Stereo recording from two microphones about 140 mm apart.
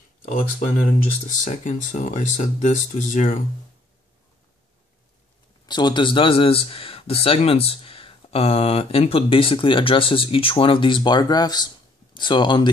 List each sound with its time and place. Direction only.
0.9 s speech: 65° left (ahead or behind)
5.7 s speech: 30° left (ahead or behind)